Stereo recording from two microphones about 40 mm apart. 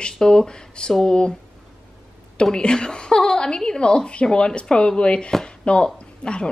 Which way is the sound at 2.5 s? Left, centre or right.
Left.